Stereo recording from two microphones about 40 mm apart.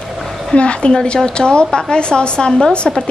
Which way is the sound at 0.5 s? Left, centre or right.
Left.